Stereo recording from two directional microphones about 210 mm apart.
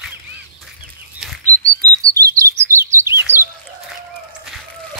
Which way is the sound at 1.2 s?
Centre (ahead or behind).